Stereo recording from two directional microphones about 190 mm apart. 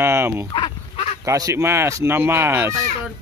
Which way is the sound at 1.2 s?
15° right (ahead or behind).